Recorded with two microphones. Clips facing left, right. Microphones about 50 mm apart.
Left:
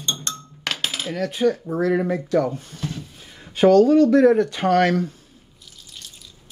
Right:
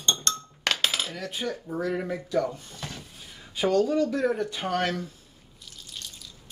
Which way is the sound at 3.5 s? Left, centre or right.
Left.